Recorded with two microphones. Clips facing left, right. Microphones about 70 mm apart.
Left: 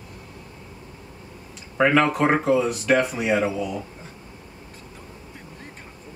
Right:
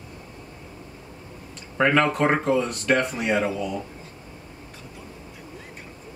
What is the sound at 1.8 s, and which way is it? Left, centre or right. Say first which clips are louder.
Speech: left 1 dB; centre.